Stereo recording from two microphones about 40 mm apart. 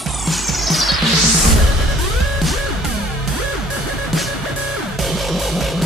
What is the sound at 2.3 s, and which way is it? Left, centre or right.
Music, centre.